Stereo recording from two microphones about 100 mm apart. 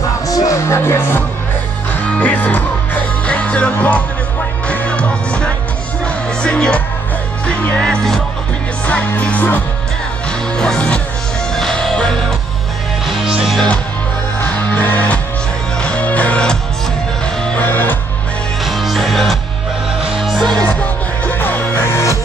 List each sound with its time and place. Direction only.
0.3 s music: 35° left (ahead or behind)
2.0 s music: 15° left (ahead or behind)
14.4 s music: 20° left (ahead or behind)
18.7 s music: centre (ahead or behind); by 22.1 s 25° left (ahead or behind)